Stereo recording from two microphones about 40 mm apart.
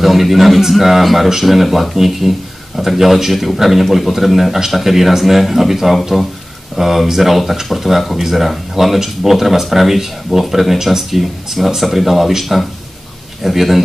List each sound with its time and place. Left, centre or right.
0.0 s speech: centre